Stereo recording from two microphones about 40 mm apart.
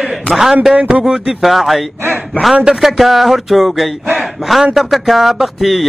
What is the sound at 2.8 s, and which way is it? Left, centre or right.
Mantra, centre.